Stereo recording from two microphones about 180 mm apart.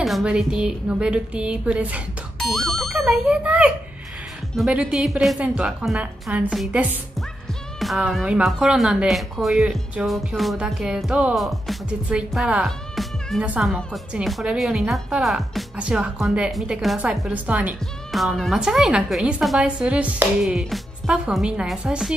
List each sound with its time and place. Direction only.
0.0 s speech: centre (ahead or behind)